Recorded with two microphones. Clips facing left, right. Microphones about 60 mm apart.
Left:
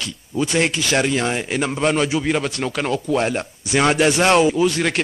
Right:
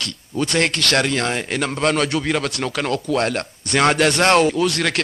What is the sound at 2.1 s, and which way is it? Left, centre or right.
Speech, centre.